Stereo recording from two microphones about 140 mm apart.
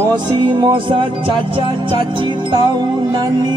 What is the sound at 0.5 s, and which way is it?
Music, 35° right (ahead or behind).